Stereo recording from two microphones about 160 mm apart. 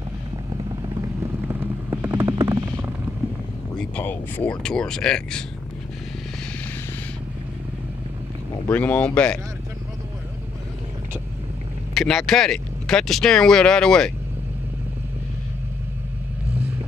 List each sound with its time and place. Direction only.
0.5 s vehicle: 20° right (ahead or behind)
3.7 s speech: 10° left (ahead or behind)
8.6 s speech: 10° left (ahead or behind)
11.9 s speech: centre (ahead or behind)